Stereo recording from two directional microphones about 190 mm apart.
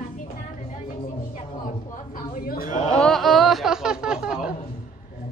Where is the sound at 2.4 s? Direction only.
50° left (ahead or behind).